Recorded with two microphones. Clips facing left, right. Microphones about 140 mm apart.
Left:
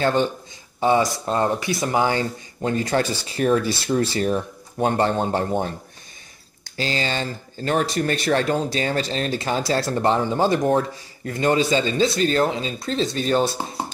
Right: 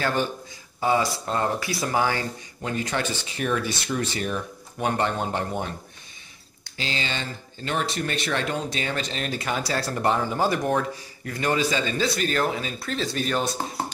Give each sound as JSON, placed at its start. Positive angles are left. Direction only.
{"t": 0.0, "sound": "speech", "side_deg": 25}